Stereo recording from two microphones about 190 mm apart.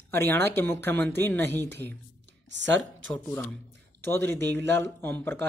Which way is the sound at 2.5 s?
70° right (ahead or behind).